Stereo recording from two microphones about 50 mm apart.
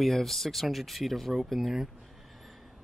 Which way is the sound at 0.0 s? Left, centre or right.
Centre.